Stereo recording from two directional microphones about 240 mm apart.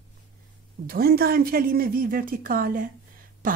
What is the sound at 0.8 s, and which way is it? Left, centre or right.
A woman's voice, right.